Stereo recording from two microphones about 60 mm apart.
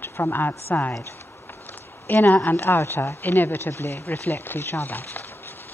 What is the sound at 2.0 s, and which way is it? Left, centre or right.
Speech, left.